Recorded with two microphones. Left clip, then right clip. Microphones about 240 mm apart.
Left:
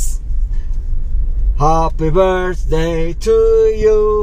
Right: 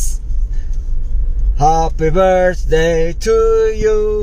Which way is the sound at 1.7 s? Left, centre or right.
Right.